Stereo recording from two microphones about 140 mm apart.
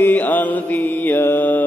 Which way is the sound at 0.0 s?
15° left (ahead or behind).